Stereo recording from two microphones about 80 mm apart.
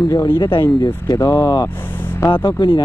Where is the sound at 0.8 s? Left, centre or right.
Left.